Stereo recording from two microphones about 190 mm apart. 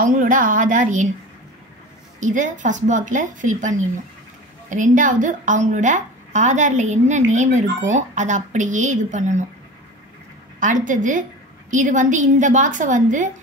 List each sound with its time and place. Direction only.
0.0 s a woman's voice: 45° right (ahead or behind)
2.1 s a woman's voice: 40° right (ahead or behind)
10.6 s a woman's voice: 45° right (ahead or behind)